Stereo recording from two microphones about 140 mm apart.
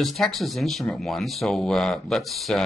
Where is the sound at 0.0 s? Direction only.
Centre (ahead or behind).